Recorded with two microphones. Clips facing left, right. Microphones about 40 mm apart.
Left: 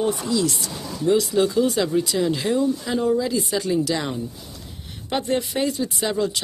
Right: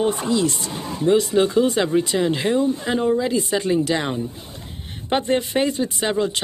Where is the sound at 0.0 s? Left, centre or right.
Right.